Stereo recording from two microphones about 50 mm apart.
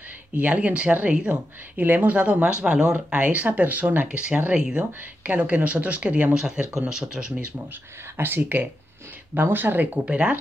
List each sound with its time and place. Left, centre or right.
0.4 s speech: right
1.3 s speech: right; by 3.2 s centre
3.2 s speech: right
4.1 s speech: right
6.3 s speech: centre
8.2 s speech: right
10.0 s speech: right